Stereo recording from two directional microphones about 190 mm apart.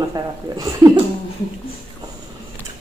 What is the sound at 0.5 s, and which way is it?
Speech, 15° right (ahead or behind).